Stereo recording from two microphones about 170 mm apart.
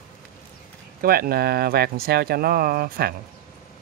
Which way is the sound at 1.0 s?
60° right (ahead or behind).